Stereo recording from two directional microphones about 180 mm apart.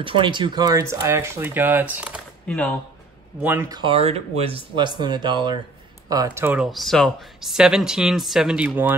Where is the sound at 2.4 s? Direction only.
5° left (ahead or behind).